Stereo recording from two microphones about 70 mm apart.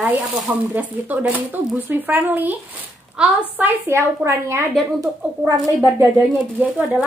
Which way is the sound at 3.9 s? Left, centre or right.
Right.